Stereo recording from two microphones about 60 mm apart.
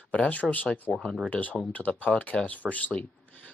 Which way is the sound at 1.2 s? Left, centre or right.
Left.